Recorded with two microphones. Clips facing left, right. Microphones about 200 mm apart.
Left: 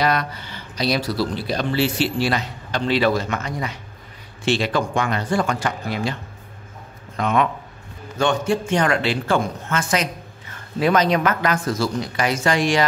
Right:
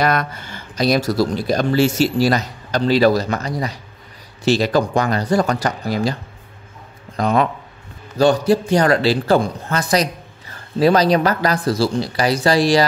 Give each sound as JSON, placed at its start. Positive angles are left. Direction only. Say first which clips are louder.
{"t": 0.0, "sound": "a man's voice", "louder": "right 2 dB", "side_deg": -50}
{"t": 7.2, "sound": "a man's voice", "louder": "right 3 dB", "side_deg": -35}